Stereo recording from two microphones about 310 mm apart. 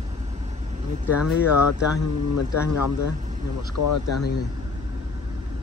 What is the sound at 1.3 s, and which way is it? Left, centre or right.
Speech, left.